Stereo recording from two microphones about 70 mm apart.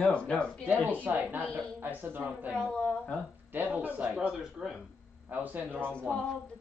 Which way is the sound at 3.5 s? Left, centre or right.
Right.